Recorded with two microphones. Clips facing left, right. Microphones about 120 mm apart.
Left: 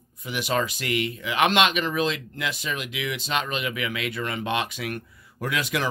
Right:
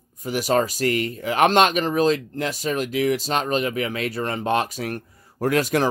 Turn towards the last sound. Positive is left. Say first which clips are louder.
# right 7 dB
turn(degrees=-40)  # may be behind; listen again after turning